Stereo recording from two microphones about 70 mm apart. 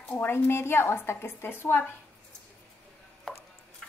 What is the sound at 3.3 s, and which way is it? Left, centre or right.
Chopping, centre.